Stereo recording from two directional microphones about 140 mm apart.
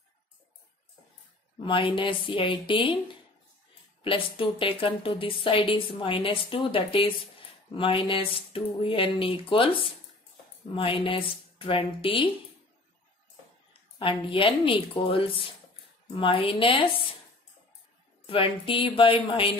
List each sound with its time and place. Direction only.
1.6 s speech: 35° left (ahead or behind)
4.0 s speech: 40° left (ahead or behind)
13.9 s speech: 35° left (ahead or behind)
18.2 s speech: 40° left (ahead or behind)